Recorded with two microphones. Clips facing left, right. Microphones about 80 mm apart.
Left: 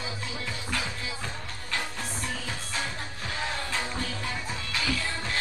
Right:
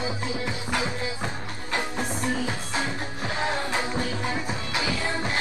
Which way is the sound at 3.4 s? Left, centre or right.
Right.